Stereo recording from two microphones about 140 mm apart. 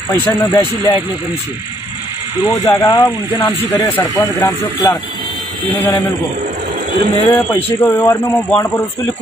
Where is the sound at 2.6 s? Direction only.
25° left (ahead or behind).